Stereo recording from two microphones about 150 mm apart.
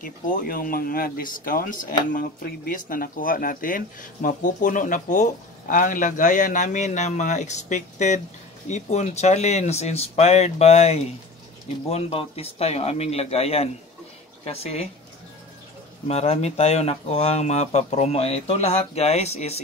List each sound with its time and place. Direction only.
0.0 s speech: 65° left (ahead or behind); by 14.9 s 45° left (ahead or behind)
16.1 s speech: 45° left (ahead or behind)